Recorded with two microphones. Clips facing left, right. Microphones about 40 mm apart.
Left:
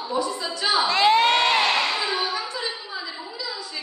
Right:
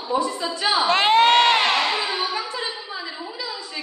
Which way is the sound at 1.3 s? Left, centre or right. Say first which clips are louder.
Right 3 dB; right.